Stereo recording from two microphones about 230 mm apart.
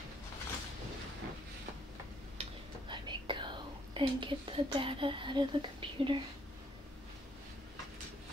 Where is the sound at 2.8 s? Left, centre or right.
Right.